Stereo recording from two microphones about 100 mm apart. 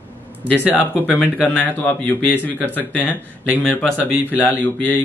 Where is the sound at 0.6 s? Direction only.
15° right (ahead or behind).